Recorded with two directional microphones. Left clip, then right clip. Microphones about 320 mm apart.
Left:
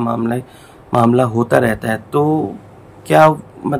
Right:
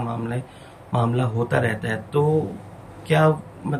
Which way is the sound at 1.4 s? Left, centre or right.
Centre.